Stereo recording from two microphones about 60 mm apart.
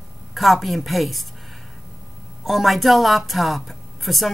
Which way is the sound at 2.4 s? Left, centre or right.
Centre.